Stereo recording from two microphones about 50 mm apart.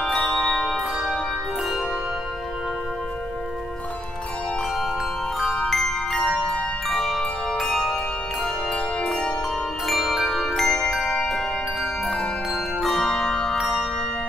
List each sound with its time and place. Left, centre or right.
0.0 s bell: centre
5.6 s music: centre
7.0 s music: centre
9.0 s bell: centre
9.8 s music: centre
10.7 s music: centre
11.8 s music: left
12.8 s zither: centre